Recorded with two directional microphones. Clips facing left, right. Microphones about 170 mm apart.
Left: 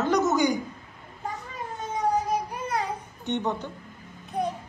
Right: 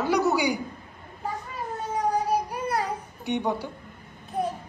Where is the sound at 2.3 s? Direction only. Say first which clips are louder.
Right 2 dB; 10° right (ahead or behind).